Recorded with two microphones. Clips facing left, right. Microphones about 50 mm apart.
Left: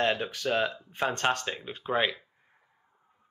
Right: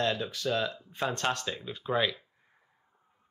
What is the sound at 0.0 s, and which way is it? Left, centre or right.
Speech, left.